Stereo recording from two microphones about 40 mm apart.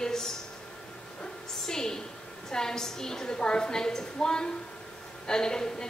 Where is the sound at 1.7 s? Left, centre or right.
Centre.